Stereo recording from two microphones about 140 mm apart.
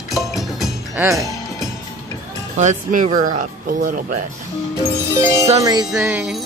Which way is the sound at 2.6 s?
65° right (ahead or behind).